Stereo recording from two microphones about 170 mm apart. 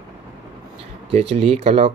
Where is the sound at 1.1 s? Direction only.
35° right (ahead or behind).